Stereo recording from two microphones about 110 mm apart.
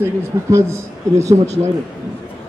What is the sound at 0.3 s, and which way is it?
Speech, 35° right (ahead or behind).